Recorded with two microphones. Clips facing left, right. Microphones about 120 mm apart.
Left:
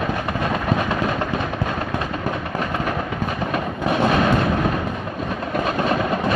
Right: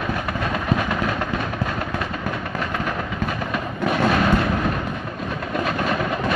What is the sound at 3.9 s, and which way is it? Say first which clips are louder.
Artillery fire: left 1 dB; 20° left (ahead or behind).